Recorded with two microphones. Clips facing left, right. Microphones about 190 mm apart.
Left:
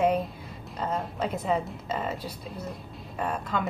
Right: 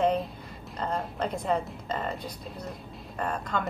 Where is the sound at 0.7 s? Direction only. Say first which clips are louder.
Left 1 dB; 5° left (ahead or behind).